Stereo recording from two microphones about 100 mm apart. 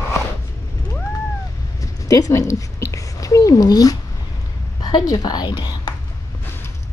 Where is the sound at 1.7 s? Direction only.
35° left (ahead or behind).